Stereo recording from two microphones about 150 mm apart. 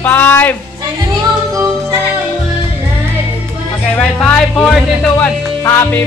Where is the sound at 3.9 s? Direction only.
5° left (ahead or behind).